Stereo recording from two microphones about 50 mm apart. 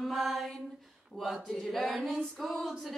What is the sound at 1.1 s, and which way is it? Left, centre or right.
Speech, left.